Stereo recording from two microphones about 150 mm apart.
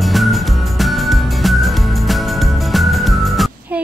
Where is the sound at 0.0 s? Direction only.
Centre (ahead or behind).